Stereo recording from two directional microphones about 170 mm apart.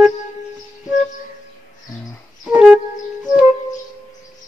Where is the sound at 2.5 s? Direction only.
5° right (ahead or behind).